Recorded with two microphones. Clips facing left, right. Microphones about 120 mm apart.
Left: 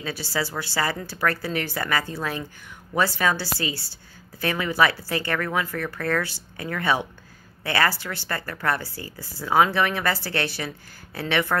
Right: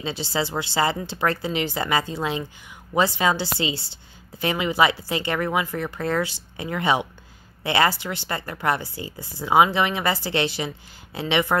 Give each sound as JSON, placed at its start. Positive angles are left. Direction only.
{"t": 0.0, "sound": "a woman's voice", "side_deg": -20}